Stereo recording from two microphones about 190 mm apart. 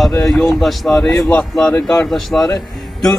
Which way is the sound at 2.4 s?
15° left (ahead or behind).